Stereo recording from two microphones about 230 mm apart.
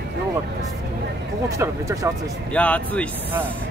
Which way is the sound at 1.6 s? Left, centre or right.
Centre.